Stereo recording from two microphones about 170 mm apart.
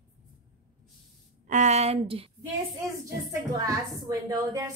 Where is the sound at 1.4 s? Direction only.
45° right (ahead or behind).